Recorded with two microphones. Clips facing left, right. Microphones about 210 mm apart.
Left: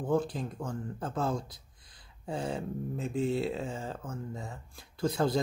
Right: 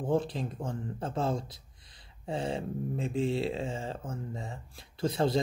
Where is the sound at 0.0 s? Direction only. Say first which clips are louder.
Even; 30° right (ahead or behind).